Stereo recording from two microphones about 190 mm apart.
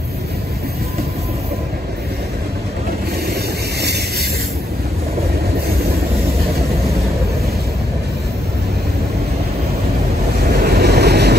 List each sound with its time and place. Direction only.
10.4 s vehicle: 55° right (ahead or behind)